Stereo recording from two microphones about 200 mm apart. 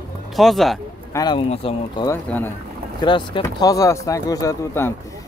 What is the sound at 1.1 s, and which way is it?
Speech, 20° left (ahead or behind).